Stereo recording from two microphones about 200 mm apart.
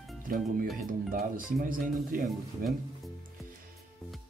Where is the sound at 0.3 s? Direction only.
45° right (ahead or behind).